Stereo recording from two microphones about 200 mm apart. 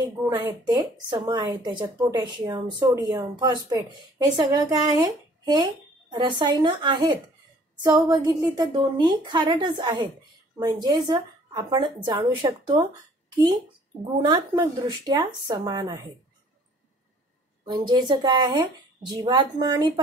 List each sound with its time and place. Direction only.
0.3 s speech: 10° right (ahead or behind)
14.2 s speech: 20° right (ahead or behind)
17.6 s speech: 20° right (ahead or behind)